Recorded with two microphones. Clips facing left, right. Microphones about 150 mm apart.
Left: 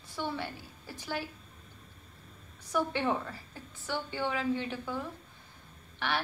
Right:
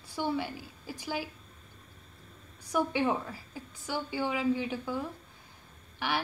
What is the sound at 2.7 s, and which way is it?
A woman's voice, 10° right (ahead or behind).